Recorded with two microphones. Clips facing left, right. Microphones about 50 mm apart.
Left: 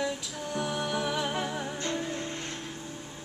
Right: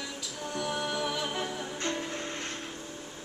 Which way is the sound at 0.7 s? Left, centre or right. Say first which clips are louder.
Even; centre.